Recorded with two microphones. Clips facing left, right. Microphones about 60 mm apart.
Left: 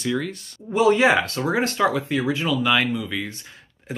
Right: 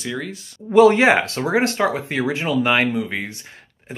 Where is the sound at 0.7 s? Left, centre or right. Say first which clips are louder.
Right 4 dB; right.